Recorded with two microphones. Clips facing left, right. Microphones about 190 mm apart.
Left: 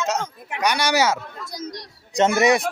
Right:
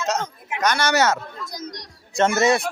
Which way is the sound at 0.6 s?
15° left (ahead or behind).